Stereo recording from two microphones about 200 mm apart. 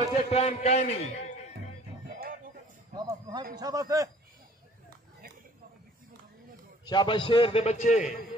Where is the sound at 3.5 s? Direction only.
20° right (ahead or behind).